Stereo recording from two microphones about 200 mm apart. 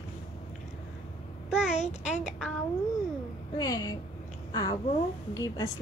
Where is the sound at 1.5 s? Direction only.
5° right (ahead or behind).